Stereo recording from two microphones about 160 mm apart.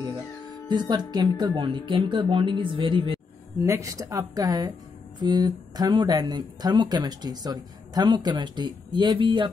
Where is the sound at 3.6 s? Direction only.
20° right (ahead or behind).